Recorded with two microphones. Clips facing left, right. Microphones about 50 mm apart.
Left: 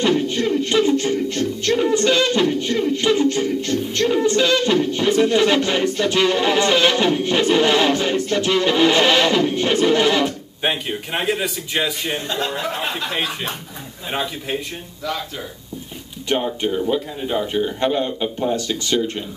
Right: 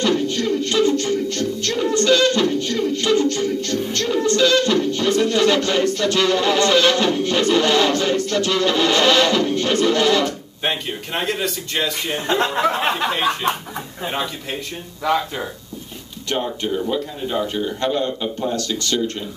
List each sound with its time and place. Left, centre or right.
0.0 s music: centre
16.3 s a man's voice: centre